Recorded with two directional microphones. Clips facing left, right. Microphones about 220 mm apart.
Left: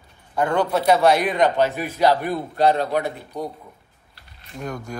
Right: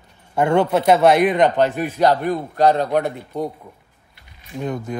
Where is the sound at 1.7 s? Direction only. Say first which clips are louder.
Right 2 dB; 50° right (ahead or behind).